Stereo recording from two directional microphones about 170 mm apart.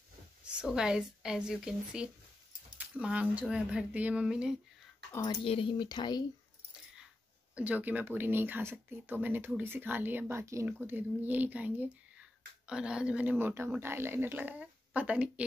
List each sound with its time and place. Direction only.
0.6 s speech: 5° right (ahead or behind)
5.2 s speech: 30° left (ahead or behind)
7.5 s speech: 10° right (ahead or behind)